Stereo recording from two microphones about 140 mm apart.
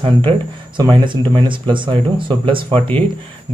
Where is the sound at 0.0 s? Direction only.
40° right (ahead or behind).